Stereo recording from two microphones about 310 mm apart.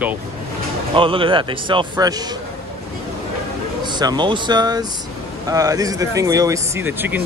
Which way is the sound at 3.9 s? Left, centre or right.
Centre.